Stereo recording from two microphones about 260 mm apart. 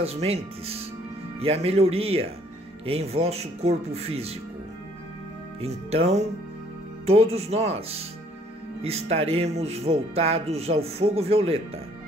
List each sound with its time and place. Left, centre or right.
0.0 s speech: right
5.6 s speech: right